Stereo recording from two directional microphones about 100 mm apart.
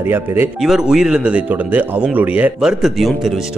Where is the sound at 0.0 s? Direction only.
20° right (ahead or behind).